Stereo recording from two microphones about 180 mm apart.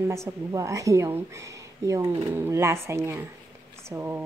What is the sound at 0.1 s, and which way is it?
Speech, 15° right (ahead or behind).